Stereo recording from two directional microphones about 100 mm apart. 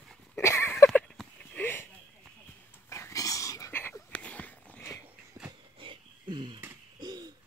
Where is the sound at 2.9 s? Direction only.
30° left (ahead or behind).